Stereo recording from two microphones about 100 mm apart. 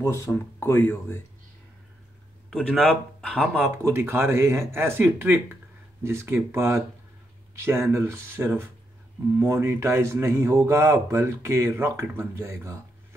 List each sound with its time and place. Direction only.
0.0 s speech: 30° left (ahead or behind)
2.8 s speech: 5° left (ahead or behind)
3.7 s speech: 25° right (ahead or behind)